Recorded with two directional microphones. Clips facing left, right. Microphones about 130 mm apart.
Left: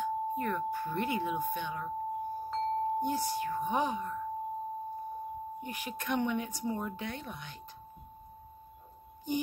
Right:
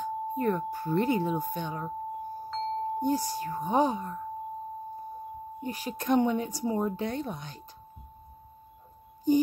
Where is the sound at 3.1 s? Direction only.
35° right (ahead or behind).